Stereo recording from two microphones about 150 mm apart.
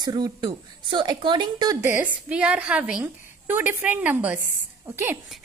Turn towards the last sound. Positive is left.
turn(degrees=-15)  # may be behind; listen again after turning